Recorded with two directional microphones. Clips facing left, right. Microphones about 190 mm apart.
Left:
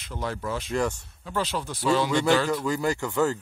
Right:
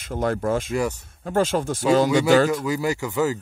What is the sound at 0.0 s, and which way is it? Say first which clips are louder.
Speech: right 8 dB; 50° right (ahead or behind).